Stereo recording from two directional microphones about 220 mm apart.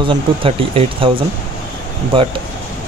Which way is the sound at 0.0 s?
25° right (ahead or behind).